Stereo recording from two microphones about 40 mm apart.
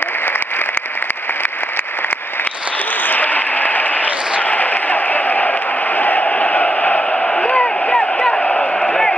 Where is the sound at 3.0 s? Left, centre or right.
Left.